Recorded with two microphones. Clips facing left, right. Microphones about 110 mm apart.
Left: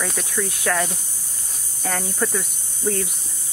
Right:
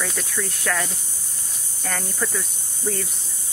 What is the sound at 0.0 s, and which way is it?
Speech, 10° left (ahead or behind).